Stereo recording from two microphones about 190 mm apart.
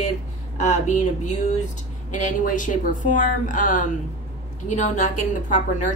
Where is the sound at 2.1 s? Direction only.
40° left (ahead or behind).